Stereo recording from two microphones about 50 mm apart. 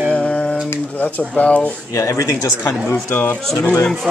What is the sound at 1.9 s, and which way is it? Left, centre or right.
Speech, left.